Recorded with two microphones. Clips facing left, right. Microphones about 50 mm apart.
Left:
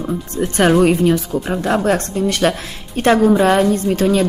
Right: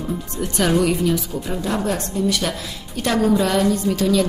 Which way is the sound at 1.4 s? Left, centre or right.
Left.